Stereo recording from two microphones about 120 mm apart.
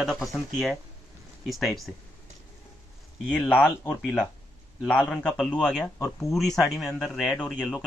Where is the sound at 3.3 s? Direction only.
10° left (ahead or behind).